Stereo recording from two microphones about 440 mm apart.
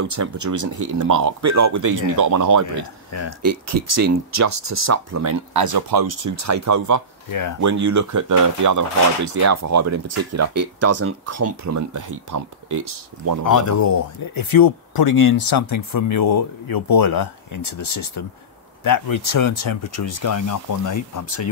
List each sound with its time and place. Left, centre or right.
0.1 s speech: right
3.1 s speech: left
3.4 s speech: right
7.2 s speech: left
7.6 s speech: right
13.5 s speech: left
14.3 s speech: left
16.2 s speech: left
17.8 s speech: left
19.2 s speech: left